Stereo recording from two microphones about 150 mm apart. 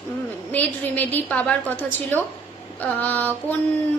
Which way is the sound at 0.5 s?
10° left (ahead or behind).